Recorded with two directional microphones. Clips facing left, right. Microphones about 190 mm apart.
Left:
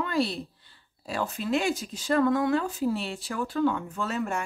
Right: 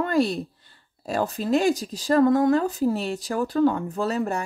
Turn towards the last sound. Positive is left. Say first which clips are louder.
# right 5 dB
turn(degrees=-35)  # may be behind; listen again after turning